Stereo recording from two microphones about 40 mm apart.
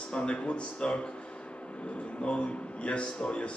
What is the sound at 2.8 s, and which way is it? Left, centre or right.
Speech, left.